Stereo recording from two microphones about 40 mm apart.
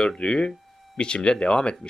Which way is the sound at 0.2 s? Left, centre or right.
Left.